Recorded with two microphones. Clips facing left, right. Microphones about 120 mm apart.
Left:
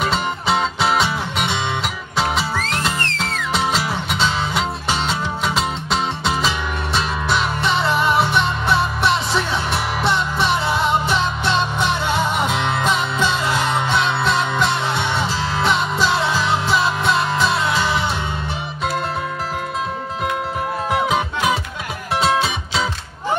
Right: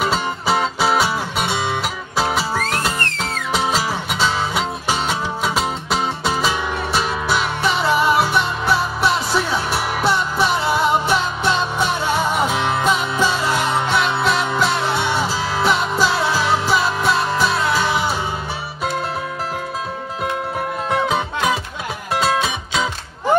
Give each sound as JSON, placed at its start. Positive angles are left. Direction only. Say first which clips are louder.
{"t": 0.0, "sound": "music", "louder": "right 1 dB", "side_deg": -5}
{"t": 20.9, "sound": "music", "louder": "even", "side_deg": 15}